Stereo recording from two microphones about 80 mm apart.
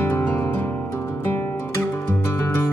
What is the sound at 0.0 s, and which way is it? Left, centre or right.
Music, left.